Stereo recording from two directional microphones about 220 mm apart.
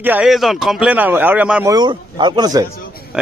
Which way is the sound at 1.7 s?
20° right (ahead or behind).